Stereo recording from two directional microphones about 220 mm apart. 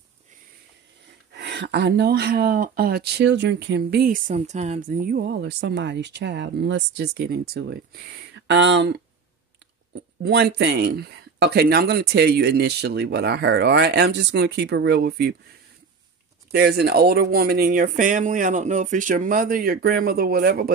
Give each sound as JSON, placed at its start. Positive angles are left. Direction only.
{"t": 1.3, "sound": "speech", "side_deg": -50}
{"t": 10.2, "sound": "speech", "side_deg": -45}
{"t": 16.5, "sound": "speech", "side_deg": -45}